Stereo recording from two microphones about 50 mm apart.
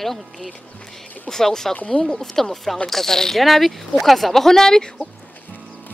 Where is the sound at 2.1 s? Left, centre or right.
Centre.